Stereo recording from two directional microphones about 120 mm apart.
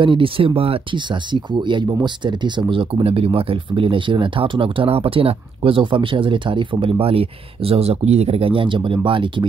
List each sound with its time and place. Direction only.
0.0 s speech: 45° right (ahead or behind)